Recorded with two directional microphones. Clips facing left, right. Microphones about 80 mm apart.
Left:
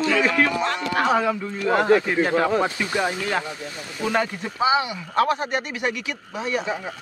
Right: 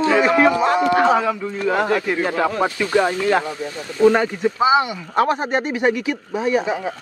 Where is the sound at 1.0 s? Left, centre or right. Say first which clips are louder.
Right 4 dB; centre.